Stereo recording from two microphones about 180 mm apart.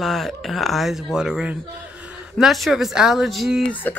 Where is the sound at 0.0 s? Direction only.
Centre (ahead or behind).